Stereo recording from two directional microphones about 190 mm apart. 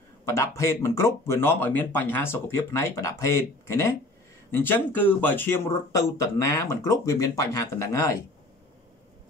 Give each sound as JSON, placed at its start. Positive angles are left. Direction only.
{"t": 0.2, "sound": "speech", "side_deg": 15}